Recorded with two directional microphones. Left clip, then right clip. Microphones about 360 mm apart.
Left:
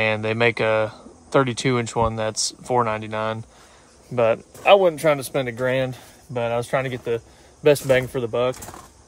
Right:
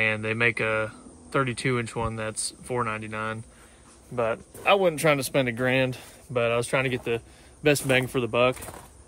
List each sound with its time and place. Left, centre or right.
0.0 s speech: centre
4.1 s speech: left
4.6 s speech: centre